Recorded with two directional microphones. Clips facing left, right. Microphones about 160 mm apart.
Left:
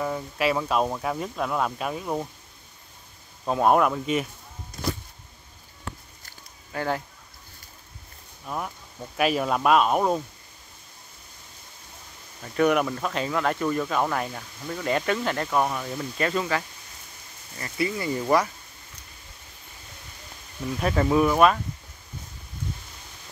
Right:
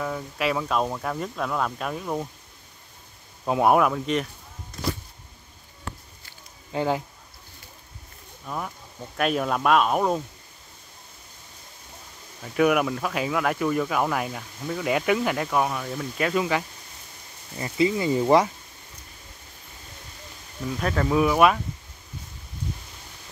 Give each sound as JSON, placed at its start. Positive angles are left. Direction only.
{"t": 0.0, "sound": "speech", "side_deg": 5}
{"t": 3.4, "sound": "speech", "side_deg": -10}
{"t": 6.7, "sound": "speech", "side_deg": -15}
{"t": 8.5, "sound": "speech", "side_deg": 5}
{"t": 12.4, "sound": "speech", "side_deg": -5}
{"t": 20.8, "sound": "speech", "side_deg": 5}
{"t": 21.2, "sound": "speech", "side_deg": -5}